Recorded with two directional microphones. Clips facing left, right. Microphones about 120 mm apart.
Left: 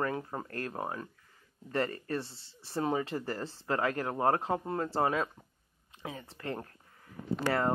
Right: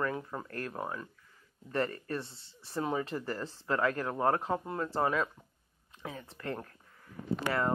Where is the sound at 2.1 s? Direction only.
30° left (ahead or behind).